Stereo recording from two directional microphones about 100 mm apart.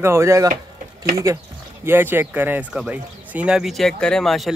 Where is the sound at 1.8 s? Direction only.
20° right (ahead or behind).